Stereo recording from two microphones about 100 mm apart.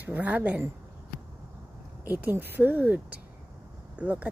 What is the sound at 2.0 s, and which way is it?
Speech, 20° right (ahead or behind).